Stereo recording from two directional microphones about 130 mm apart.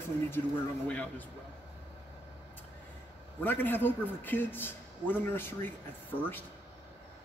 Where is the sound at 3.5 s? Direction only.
15° left (ahead or behind).